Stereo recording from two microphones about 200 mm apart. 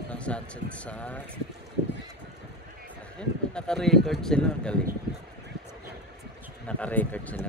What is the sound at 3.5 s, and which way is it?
Speech, 5° left (ahead or behind).